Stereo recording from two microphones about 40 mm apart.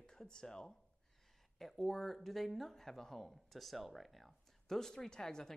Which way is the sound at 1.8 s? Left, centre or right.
Centre.